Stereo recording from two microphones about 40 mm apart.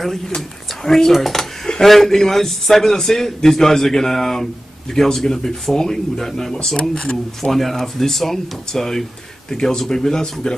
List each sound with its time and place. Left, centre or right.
0.8 s a man's voice: centre
7.5 s a man's voice: centre